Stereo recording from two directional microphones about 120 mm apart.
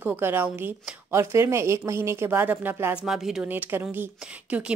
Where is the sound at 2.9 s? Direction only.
5° right (ahead or behind).